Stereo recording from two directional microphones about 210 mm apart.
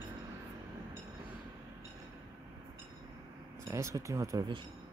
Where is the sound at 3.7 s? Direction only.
15° right (ahead or behind).